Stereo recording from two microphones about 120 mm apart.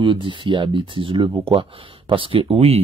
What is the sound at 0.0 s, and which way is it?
Speech, 45° right (ahead or behind).